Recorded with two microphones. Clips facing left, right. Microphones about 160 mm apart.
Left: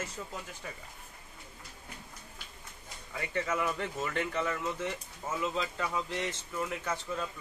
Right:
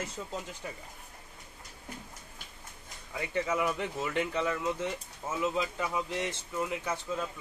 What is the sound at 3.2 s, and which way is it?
Speech, 15° right (ahead or behind).